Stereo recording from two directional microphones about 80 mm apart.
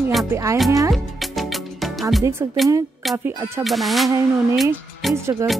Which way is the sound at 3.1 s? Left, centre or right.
Right.